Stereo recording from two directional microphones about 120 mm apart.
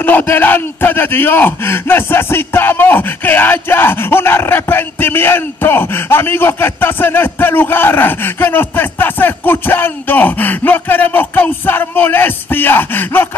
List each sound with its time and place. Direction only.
0.0 s speech: 20° left (ahead or behind)